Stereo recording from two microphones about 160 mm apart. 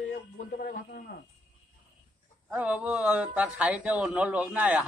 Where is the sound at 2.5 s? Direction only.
10° right (ahead or behind).